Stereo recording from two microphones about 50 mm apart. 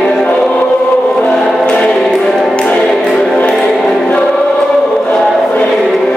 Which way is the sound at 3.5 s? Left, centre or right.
Centre.